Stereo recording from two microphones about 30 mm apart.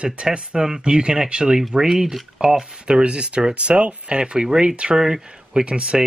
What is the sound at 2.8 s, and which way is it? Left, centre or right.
Speech, right.